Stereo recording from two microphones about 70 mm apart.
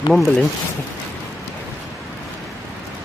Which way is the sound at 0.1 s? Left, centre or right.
Centre.